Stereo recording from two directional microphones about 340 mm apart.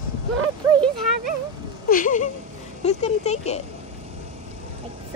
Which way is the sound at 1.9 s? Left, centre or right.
Left.